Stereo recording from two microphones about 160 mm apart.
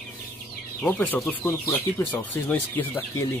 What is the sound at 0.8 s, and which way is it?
Speech, 10° left (ahead or behind).